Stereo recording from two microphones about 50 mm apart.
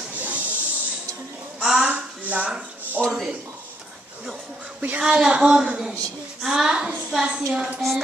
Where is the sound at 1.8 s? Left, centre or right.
Right.